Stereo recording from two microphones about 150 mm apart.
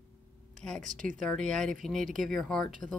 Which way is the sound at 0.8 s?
60° right (ahead or behind).